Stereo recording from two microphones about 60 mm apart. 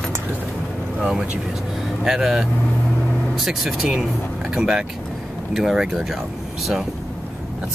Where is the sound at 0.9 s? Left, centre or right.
Centre.